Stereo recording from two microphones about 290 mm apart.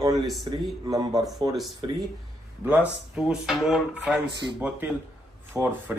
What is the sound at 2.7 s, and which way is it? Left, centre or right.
Speech, centre.